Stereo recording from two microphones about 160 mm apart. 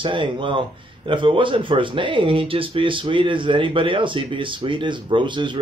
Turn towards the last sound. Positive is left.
turn(degrees=-30)  # may be behind; listen again after turning